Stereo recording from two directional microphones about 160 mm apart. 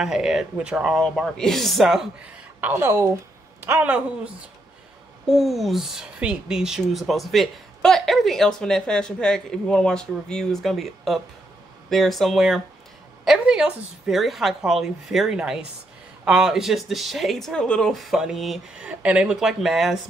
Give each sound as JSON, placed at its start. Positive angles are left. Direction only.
{"t": 0.0, "sound": "speech", "side_deg": -5}
{"t": 2.6, "sound": "speech", "side_deg": -15}